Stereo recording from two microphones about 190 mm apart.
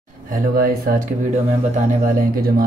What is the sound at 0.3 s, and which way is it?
Speech, 50° right (ahead or behind).